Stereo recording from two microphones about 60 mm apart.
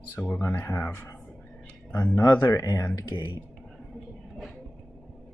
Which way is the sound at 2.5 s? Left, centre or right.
Left.